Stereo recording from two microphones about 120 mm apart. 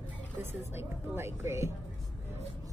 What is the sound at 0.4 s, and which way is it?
A woman's voice, 20° right (ahead or behind).